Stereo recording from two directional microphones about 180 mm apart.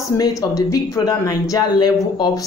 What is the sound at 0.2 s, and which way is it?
Speech, 20° left (ahead or behind).